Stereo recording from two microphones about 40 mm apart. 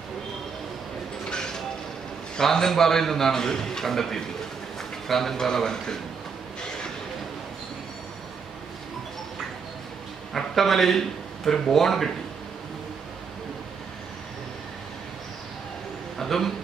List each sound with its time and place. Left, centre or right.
1.2 s a sound: centre
2.3 s a man's voice: centre
10.3 s speech: centre
16.2 s a man's voice: centre